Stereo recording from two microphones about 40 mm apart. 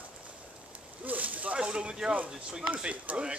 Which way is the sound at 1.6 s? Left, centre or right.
Right.